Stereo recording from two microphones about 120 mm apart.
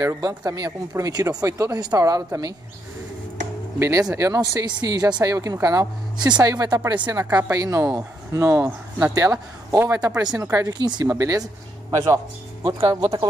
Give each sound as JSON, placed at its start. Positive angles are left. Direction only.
{"t": 0.0, "sound": "speech", "side_deg": -25}
{"t": 4.1, "sound": "a woman's voice", "side_deg": -25}
{"t": 7.2, "sound": "a woman's voice", "side_deg": -20}
{"t": 12.8, "sound": "speech", "side_deg": -45}